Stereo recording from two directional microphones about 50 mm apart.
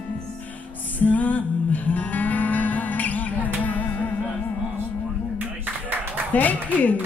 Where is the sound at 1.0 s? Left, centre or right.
Left.